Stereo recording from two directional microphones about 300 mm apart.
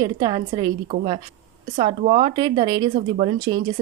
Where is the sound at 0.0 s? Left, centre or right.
Centre.